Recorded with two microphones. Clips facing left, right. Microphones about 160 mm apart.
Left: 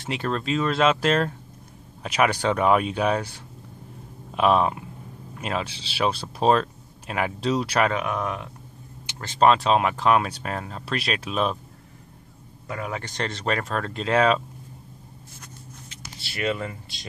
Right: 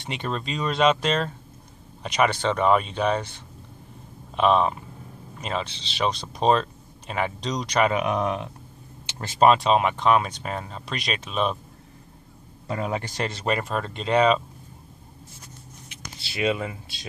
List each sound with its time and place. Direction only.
0.0 s speech: centre (ahead or behind)
7.9 s speech: 20° right (ahead or behind)
9.2 s speech: 10° right (ahead or behind)
12.6 s a man's voice: 25° right (ahead or behind)
13.0 s speech: 5° right (ahead or behind)
16.3 s speech: 15° right (ahead or behind)